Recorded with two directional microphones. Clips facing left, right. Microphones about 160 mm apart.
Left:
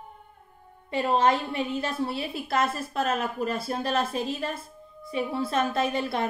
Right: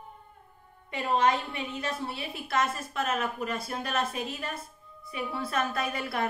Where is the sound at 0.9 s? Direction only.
30° left (ahead or behind).